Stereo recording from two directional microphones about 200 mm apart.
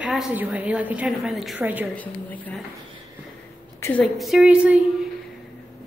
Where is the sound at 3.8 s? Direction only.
10° left (ahead or behind).